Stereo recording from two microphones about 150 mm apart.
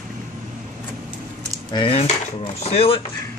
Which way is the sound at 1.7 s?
40° left (ahead or behind).